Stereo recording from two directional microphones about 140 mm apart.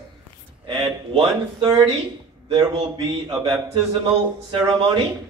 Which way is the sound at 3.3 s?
30° right (ahead or behind).